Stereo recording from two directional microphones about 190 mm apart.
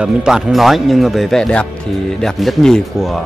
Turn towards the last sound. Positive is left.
turn(degrees=0)  # may be behind; listen again after turning